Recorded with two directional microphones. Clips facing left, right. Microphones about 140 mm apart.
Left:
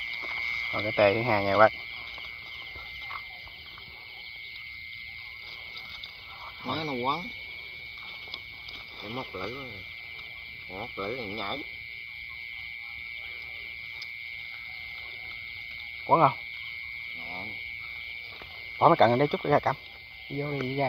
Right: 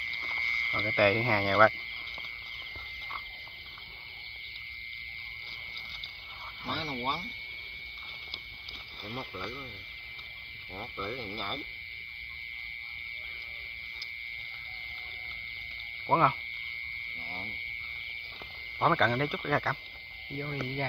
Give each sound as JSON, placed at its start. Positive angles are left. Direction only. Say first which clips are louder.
{"t": 0.2, "sound": "speech", "louder": "even", "side_deg": 25}
{"t": 6.8, "sound": "owl", "louder": "left 5 dB", "side_deg": 40}
{"t": 9.0, "sound": "speech", "louder": "left 3 dB", "side_deg": 15}
{"t": 10.8, "sound": "speech", "louder": "left 4 dB", "side_deg": 20}
{"t": 16.1, "sound": "speech", "louder": "left 4 dB", "side_deg": 25}
{"t": 17.2, "sound": "a sound", "louder": "left 2 dB", "side_deg": 25}
{"t": 18.8, "sound": "speech", "louder": "left 7 dB", "side_deg": 35}